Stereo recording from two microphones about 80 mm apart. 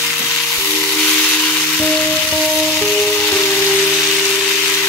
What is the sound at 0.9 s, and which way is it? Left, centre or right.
Music, centre.